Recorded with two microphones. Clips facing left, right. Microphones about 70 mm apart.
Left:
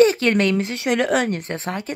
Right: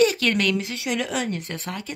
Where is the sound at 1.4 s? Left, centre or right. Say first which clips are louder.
Left 5 dB; left.